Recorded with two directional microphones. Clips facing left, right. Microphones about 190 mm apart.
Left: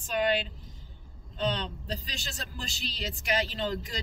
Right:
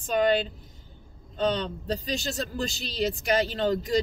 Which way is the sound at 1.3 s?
45° right (ahead or behind).